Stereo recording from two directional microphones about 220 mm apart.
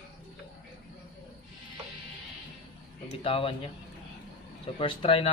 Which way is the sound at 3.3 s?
25° left (ahead or behind).